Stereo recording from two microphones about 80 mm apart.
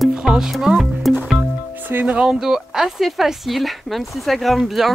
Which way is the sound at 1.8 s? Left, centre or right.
Right.